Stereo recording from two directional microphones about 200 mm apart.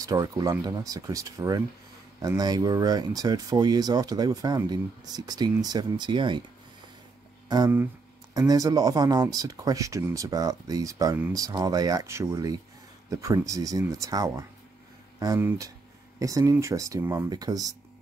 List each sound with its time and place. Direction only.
0.0 s speech: 15° right (ahead or behind)
7.4 s speech: 20° right (ahead or behind)